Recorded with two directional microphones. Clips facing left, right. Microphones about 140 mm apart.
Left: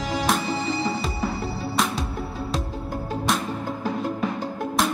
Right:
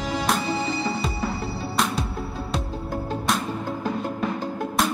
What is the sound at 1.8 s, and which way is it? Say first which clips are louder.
Music: even; centre (ahead or behind).